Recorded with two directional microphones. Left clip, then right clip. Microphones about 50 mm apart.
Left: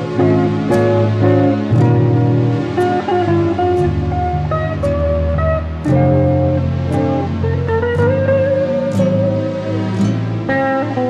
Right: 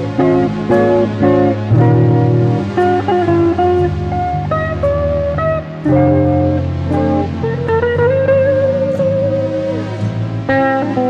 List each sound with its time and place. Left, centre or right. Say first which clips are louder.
0.2 s music: right 2 dB; left
5.9 s music: right 3 dB; left
7.8 s music: right 3 dB; left
10.5 s music: right 3 dB; left